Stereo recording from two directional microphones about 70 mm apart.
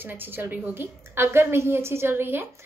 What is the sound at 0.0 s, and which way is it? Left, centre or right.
A woman's voice, right.